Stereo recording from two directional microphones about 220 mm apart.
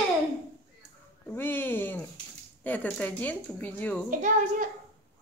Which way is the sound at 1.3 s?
10° left (ahead or behind).